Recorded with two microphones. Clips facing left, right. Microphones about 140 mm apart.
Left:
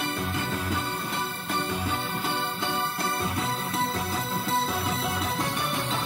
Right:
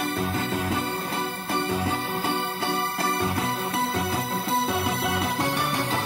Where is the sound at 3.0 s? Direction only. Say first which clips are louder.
Right 3 dB; 30° right (ahead or behind).